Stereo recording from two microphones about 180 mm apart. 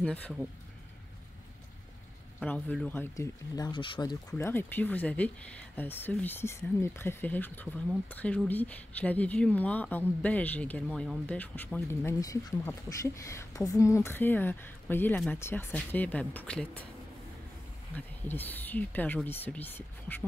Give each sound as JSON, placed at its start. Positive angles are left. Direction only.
{"t": 0.0, "sound": "speech", "side_deg": 5}
{"t": 2.4, "sound": "speech", "side_deg": 5}
{"t": 4.3, "sound": "speech", "side_deg": 10}
{"t": 17.9, "sound": "speech", "side_deg": 10}